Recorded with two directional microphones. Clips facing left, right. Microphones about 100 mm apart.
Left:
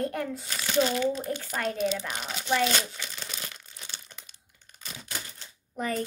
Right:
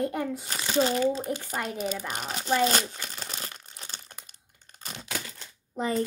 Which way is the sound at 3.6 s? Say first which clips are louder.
Right 2 dB; 50° right (ahead or behind).